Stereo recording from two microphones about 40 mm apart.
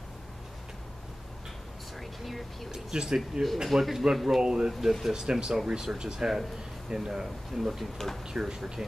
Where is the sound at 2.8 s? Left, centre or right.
Centre.